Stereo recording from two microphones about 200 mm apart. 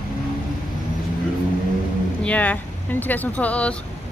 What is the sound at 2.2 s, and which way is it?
Speech, 5° left (ahead or behind).